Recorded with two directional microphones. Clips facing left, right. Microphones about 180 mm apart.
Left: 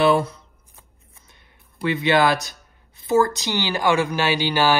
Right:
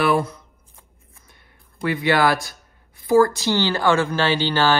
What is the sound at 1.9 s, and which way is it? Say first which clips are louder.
A woman's voice: even; 20° left (ahead or behind).